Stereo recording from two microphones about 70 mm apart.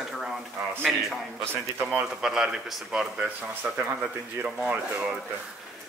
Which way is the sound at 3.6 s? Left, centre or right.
Right.